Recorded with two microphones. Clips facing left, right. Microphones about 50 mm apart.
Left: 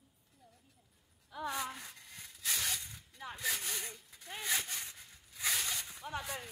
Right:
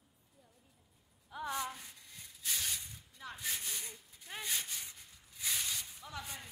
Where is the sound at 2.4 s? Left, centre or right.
Left.